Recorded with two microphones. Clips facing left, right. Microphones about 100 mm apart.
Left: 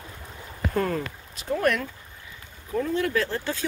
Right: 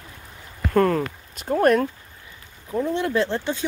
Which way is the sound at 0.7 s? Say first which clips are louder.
Right 8 dB; 50° right (ahead or behind).